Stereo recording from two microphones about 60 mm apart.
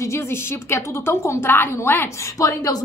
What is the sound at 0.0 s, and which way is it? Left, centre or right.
A woman's voice, left.